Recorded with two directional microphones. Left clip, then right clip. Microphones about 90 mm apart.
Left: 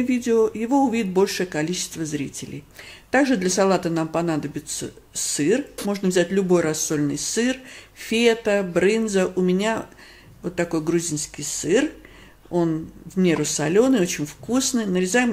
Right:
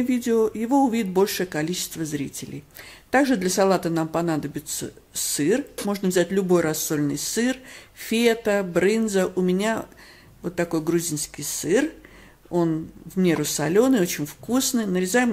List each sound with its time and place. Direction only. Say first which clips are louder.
0.0 s speech: left 2 dB; 40° right (ahead or behind)